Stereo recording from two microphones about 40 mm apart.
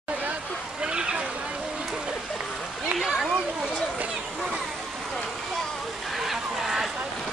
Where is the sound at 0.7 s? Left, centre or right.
Right.